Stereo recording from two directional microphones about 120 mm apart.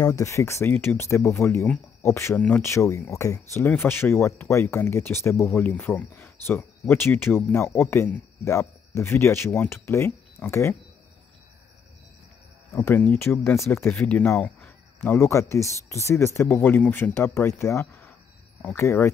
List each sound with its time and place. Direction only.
0.0 s speech: 25° left (ahead or behind)
2.3 s speech: 10° left (ahead or behind)
2.6 s speech: 25° left (ahead or behind)
12.7 s speech: 20° left (ahead or behind)
14.4 s a sound: 10° left (ahead or behind)
15.1 s speech: 25° left (ahead or behind)